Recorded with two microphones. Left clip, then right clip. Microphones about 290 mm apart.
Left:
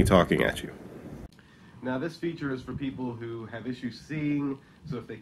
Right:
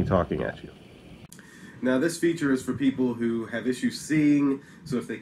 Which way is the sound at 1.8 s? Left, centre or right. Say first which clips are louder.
Right 8 dB; centre.